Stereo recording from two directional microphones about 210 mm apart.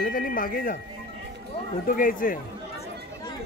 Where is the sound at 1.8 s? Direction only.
40° left (ahead or behind).